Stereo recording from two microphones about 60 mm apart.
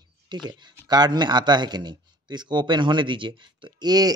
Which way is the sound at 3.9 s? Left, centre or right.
Right.